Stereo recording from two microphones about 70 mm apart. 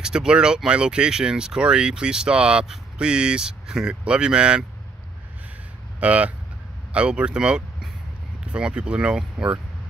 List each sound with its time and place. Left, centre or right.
0.0 s speech: centre
5.9 s speech: right